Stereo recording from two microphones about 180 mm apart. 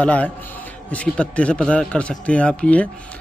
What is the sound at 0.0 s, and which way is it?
Speech, 5° left (ahead or behind).